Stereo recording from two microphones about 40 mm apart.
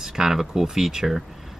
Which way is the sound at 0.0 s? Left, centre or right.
Centre.